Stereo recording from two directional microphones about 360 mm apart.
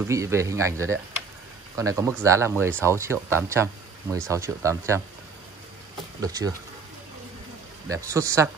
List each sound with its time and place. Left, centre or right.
0.1 s speech: centre
6.2 s speech: centre
7.9 s speech: centre